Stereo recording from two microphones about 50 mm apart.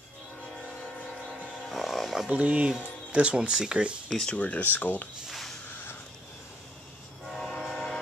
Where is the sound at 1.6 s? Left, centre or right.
Centre.